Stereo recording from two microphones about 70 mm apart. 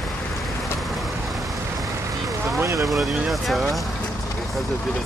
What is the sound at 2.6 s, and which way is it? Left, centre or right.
Speech, right.